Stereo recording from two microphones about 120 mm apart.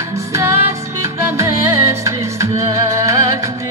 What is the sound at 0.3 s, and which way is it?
Music, 25° right (ahead or behind).